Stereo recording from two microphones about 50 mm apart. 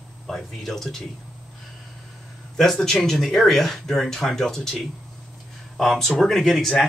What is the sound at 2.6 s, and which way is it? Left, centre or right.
Speech, centre.